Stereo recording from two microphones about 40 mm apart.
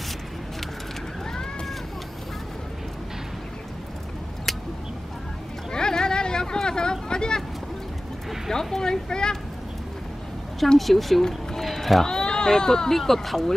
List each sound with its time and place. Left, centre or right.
1.3 s run: centre
5.7 s vehicle: centre
8.5 s speech: centre
10.8 s speech: centre
11.6 s run: centre
12.1 s speech: centre